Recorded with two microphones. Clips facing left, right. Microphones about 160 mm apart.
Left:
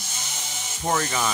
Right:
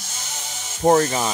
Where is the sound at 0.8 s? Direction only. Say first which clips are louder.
Right 8 dB; 40° right (ahead or behind).